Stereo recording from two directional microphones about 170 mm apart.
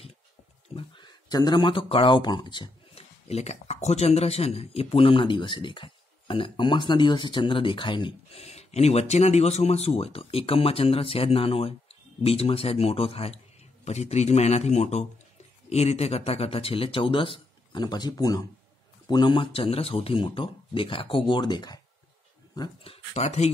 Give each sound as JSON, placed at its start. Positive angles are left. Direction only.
{"t": 0.7, "sound": "speech", "side_deg": 25}
{"t": 22.8, "sound": "speech", "side_deg": 40}